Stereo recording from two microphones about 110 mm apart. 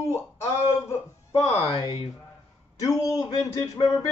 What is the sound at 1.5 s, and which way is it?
Speech, 65° left (ahead or behind).